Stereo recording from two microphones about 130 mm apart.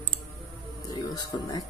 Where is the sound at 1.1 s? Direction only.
30° left (ahead or behind).